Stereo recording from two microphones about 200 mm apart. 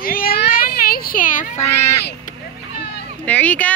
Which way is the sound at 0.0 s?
45° left (ahead or behind).